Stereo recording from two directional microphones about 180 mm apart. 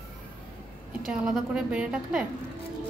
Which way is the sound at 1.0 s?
5° right (ahead or behind).